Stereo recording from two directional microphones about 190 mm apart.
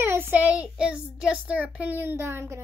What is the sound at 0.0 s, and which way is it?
A child's voice, 10° right (ahead or behind).